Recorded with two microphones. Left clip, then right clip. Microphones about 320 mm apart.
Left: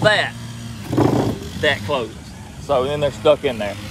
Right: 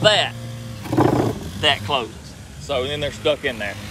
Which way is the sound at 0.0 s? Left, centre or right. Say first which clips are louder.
Even; centre.